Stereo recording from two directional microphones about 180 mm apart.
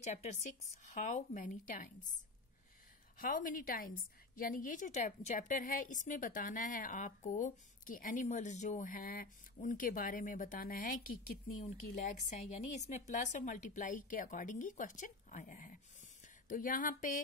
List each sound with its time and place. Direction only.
0.0 s a woman's voice: 40° left (ahead or behind)
3.2 s a woman's voice: 50° left (ahead or behind)